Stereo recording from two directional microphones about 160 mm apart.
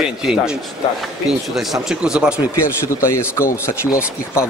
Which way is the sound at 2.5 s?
15° left (ahead or behind).